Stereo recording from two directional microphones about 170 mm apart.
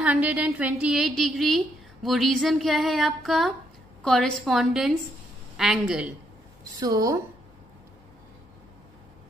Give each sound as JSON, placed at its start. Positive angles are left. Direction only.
{"t": 0.0, "sound": "a woman's voice", "side_deg": -10}
{"t": 6.6, "sound": "a woman's voice", "side_deg": -20}